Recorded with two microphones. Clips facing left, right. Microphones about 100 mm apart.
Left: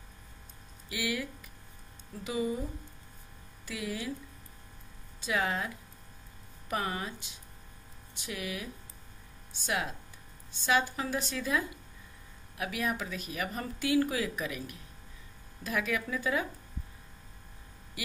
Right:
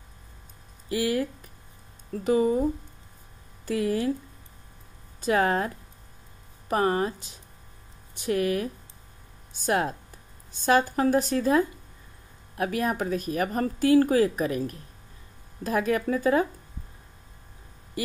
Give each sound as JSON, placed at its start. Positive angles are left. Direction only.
{"t": 0.8, "sound": "speech", "side_deg": -40}
{"t": 3.6, "sound": "speech", "side_deg": -45}
{"t": 5.2, "sound": "speech", "side_deg": -45}
{"t": 6.7, "sound": "speech", "side_deg": -40}
{"t": 18.0, "sound": "speech", "side_deg": -40}